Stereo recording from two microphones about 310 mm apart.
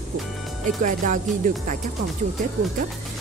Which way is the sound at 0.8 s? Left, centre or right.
Right.